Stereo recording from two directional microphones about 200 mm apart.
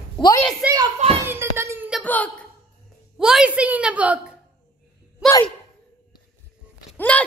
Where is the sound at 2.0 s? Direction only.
10° left (ahead or behind).